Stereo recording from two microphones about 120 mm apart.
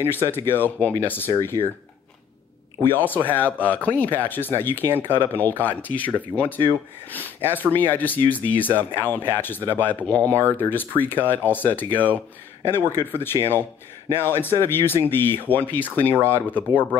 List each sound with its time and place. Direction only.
0.0 s speech: 20° left (ahead or behind)
2.9 s speech: 15° left (ahead or behind)